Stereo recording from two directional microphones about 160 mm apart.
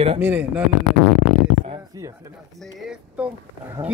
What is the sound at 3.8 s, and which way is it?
Speech, 35° right (ahead or behind).